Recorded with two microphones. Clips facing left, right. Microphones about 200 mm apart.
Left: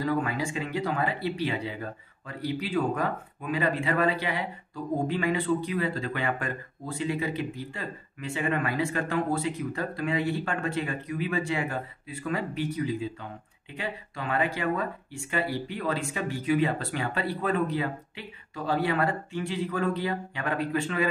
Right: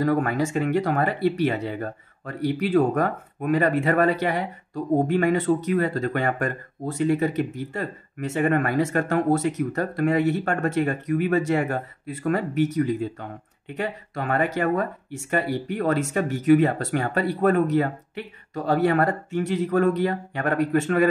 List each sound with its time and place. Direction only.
0.0 s speech: 50° right (ahead or behind)